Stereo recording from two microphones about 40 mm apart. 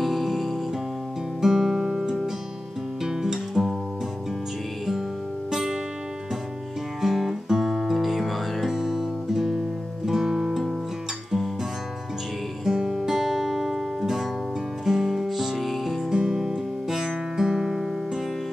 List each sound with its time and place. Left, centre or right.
0.0 s music: centre
5.5 s music: centre
7.0 s music: centre
12.6 s music: centre
16.1 s music: centre